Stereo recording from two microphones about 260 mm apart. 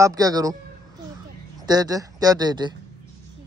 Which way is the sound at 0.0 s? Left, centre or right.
Centre.